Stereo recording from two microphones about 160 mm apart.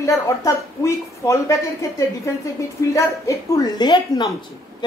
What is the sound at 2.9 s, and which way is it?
A woman's voice, 20° left (ahead or behind).